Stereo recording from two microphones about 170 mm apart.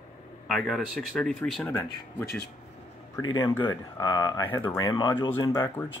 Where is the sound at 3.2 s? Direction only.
25° left (ahead or behind).